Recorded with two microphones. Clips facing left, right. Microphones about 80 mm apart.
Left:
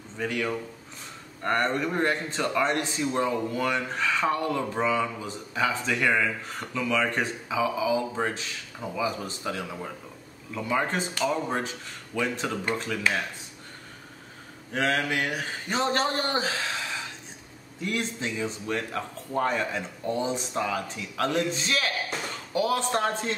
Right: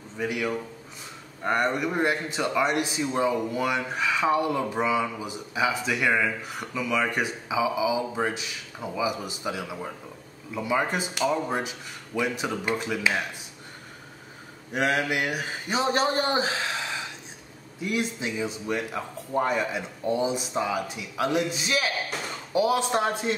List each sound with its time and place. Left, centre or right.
0.2 s a man's voice: centre
14.7 s a man's voice: centre
17.8 s a man's voice: centre